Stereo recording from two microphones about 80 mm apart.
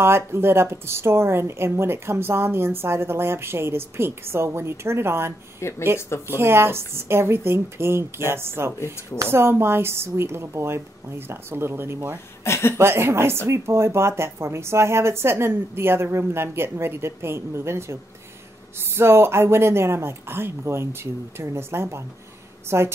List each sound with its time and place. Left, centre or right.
0.0 s speech: right
5.6 s speech: left
6.2 s speech: right
12.4 s speech: left
12.7 s speech: right
18.9 s speech: right